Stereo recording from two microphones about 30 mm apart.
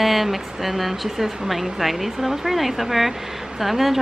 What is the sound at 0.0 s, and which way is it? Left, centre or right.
Speech, centre.